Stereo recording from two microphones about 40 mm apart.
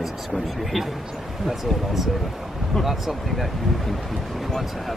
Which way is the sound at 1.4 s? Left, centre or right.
Centre.